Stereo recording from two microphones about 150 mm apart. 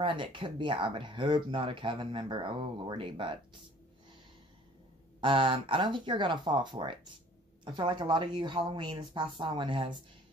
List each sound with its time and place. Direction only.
0.0 s speech: 35° right (ahead or behind)
5.2 s speech: 35° right (ahead or behind)